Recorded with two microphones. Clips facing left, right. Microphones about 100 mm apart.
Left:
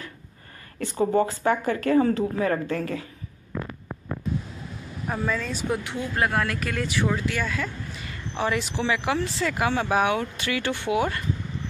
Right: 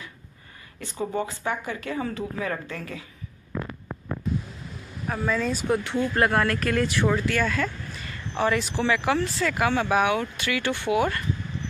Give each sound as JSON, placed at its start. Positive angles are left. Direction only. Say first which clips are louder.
{"t": 0.9, "sound": "a woman's voice", "louder": "left 6 dB", "side_deg": 40}
{"t": 5.0, "sound": "speech", "louder": "right 2 dB", "side_deg": 0}
{"t": 8.4, "sound": "speech", "louder": "right 2 dB", "side_deg": 15}